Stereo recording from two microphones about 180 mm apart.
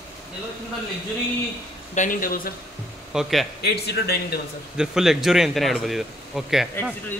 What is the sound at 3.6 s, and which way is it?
Speech, 65° left (ahead or behind).